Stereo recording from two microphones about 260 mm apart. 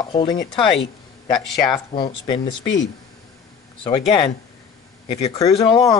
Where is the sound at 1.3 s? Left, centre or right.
Centre.